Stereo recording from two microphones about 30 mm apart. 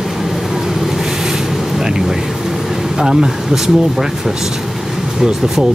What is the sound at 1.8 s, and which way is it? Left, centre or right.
Thunder, right.